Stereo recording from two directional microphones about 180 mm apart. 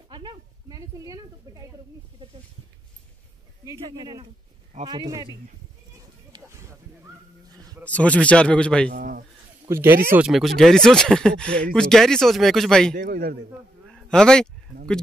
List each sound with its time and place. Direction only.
0.1 s speech: 25° right (ahead or behind)
3.8 s speech: 25° right (ahead or behind)
6.3 s a sound: 15° right (ahead or behind)
7.8 s a man's voice: 5° left (ahead or behind)
8.9 s speech: 55° right (ahead or behind)
9.7 s speech: 15° right (ahead or behind)
10.1 s speech: centre (ahead or behind)
13.0 s a man's voice: 60° right (ahead or behind)
13.8 s a sound: centre (ahead or behind)